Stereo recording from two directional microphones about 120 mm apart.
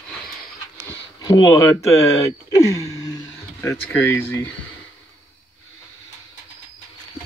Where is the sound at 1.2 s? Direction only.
35° left (ahead or behind).